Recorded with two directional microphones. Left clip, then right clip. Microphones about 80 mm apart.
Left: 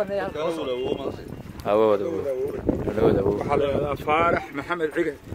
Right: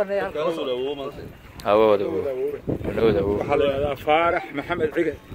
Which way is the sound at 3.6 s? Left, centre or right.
Centre.